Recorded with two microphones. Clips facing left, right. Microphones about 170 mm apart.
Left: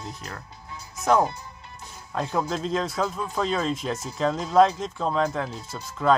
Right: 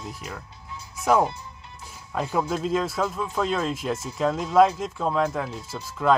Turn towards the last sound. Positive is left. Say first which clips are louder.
# even
turn(degrees=-5)  # may be behind; listen again after turning